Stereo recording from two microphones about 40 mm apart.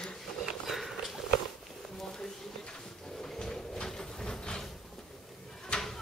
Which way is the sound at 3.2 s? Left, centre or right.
Centre.